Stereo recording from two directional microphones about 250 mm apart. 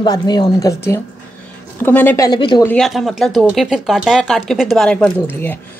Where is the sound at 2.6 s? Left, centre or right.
Centre.